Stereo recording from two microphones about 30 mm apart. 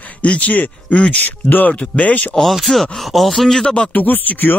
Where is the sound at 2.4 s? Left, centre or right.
Centre.